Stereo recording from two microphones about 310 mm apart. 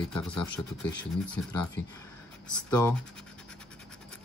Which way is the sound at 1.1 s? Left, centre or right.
Centre.